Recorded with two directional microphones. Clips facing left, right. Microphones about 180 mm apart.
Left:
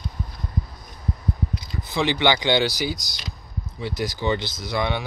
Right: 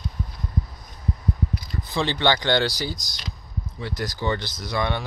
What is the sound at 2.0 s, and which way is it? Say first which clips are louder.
Speech: left 1 dB; 15° left (ahead or behind).